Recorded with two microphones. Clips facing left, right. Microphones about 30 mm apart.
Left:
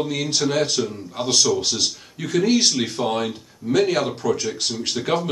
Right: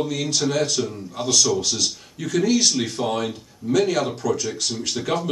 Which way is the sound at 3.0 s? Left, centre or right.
Centre.